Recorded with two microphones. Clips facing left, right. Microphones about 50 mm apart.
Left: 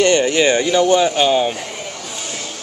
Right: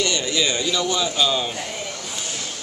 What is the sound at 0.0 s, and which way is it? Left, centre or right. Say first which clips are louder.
A man's voice: left 9 dB; left.